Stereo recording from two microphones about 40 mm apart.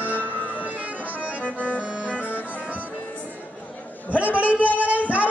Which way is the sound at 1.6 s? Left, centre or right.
Right.